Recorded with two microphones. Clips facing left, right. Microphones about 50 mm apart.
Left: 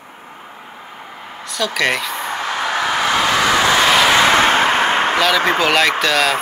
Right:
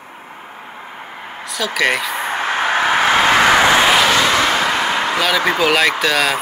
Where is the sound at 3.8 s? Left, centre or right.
Centre.